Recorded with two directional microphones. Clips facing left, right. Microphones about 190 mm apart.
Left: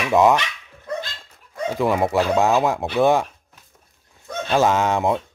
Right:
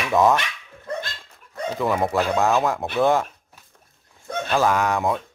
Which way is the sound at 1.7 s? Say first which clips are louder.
Left 2 dB; 15° left (ahead or behind).